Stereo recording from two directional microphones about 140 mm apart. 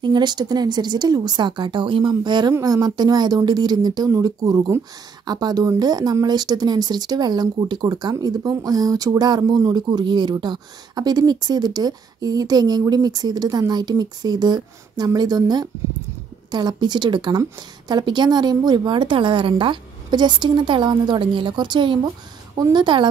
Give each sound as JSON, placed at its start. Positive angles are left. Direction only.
{"t": 0.0, "sound": "a woman's voice", "side_deg": -30}